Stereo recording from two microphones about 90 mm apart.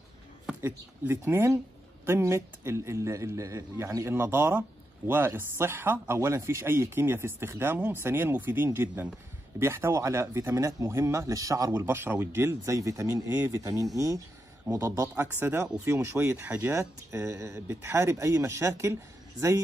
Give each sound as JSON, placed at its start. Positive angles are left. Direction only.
{"t": 0.6, "sound": "a man's voice", "side_deg": -25}
{"t": 16.7, "sound": "speech", "side_deg": -30}